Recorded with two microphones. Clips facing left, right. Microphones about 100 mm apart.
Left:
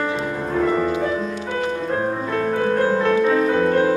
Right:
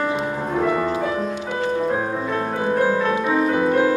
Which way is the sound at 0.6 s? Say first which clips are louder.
Left 2 dB; 10° right (ahead or behind).